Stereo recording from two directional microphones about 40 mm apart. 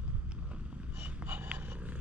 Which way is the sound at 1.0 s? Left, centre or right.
Right.